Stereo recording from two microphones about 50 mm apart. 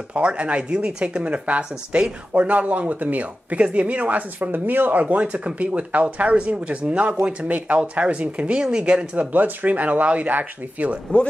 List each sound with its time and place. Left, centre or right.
0.1 s speech: right
5.1 s speech: right